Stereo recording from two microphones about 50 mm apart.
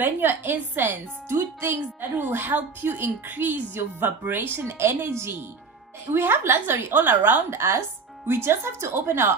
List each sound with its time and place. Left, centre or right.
0.0 s a woman's voice: right
7.5 s a woman's voice: right